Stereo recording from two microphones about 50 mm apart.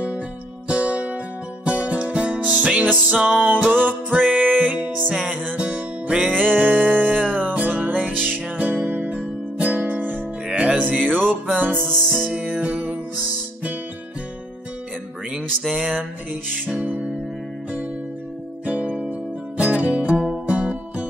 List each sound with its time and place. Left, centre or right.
0.7 s music: right
11.7 s music: centre
12.3 s music: right
15.7 s music: right
18.7 s music: right